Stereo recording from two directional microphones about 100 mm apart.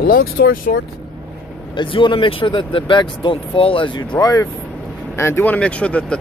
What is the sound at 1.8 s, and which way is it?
Speech, 55° left (ahead or behind).